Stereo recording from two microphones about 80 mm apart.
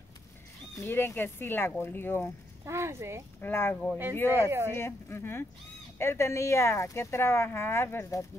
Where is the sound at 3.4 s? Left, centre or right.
Left.